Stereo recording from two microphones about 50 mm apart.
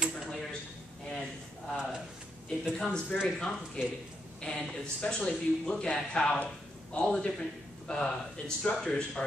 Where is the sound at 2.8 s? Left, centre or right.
Centre.